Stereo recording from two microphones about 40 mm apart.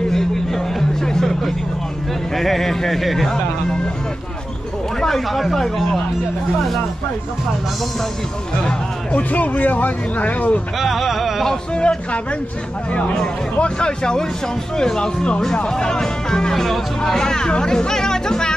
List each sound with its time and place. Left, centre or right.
0.1 s music: centre
2.3 s speech: centre
5.0 s speech: centre
9.1 s speech: left
10.8 s a sound: centre
11.7 s speech: left
13.6 s speech: left